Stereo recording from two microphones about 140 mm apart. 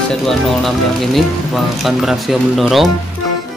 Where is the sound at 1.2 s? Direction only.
Centre (ahead or behind).